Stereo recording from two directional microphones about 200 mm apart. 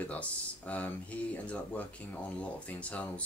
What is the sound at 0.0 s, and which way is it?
Speech, 5° left (ahead or behind).